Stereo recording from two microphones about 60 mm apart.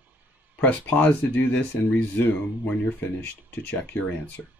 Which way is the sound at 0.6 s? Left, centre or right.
Left.